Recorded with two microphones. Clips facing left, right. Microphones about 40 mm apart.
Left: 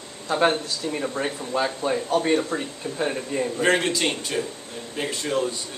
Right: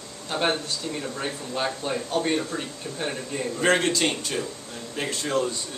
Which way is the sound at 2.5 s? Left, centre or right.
Left.